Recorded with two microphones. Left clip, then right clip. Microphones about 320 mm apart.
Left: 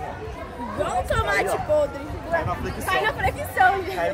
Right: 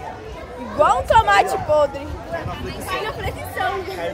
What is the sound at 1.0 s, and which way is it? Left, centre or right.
Speech, centre.